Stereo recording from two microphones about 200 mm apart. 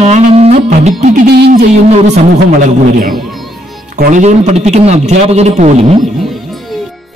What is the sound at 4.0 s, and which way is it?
Speech, 40° right (ahead or behind).